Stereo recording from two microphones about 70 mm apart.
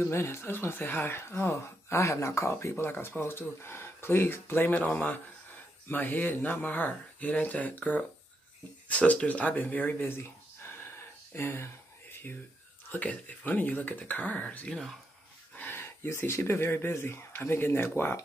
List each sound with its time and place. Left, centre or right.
0.0 s speech: left
2.7 s speech: left
10.0 s a sound: left
12.9 s speech: left
14.7 s speech: centre
15.5 s speech: left